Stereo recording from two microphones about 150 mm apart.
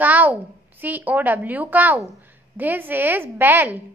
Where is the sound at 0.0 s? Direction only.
10° right (ahead or behind).